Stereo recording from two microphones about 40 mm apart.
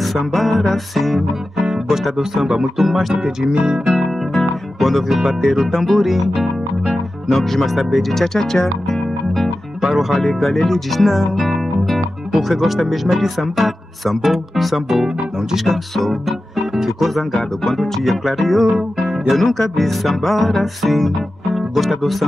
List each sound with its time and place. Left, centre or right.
0.0 s speech: centre
1.6 s music: centre
2.8 s speech: centre
3.2 s speech: centre
4.7 s music: centre
5.7 s speech: centre
5.9 s speech: centre
7.4 s speech: centre
8.1 s speech: centre
9.8 s speech: centre
10.1 s speech: centre
18.0 s speech: centre
18.9 s music: centre
19.7 s speech: centre